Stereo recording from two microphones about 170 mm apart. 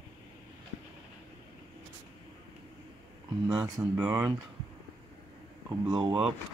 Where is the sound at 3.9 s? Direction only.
10° right (ahead or behind).